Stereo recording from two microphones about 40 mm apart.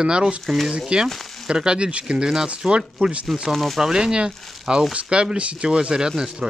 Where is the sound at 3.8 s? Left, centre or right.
Right.